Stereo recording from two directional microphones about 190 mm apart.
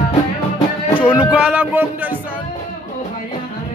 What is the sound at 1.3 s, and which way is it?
Speech, 5° right (ahead or behind).